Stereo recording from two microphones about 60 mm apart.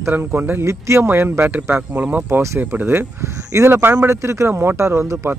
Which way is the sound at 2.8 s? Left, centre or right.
Right.